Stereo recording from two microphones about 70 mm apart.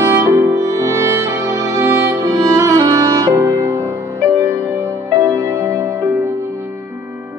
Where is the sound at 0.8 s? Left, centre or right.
Right.